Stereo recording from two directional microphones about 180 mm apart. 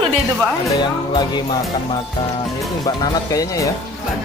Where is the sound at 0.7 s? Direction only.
25° left (ahead or behind).